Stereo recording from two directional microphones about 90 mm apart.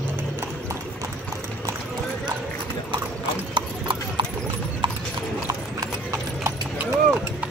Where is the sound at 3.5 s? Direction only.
60° right (ahead or behind).